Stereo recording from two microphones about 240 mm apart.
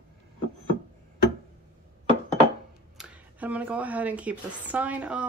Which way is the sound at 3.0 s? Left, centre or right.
Centre.